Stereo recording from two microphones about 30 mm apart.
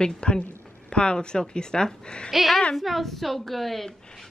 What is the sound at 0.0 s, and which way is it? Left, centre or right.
Speech, left.